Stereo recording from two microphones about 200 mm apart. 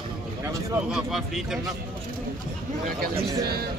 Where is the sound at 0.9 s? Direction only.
Centre (ahead or behind).